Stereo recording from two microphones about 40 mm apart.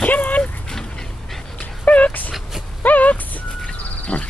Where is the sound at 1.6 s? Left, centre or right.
Left.